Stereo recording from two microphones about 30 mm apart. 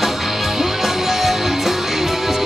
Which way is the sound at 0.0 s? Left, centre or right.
Centre.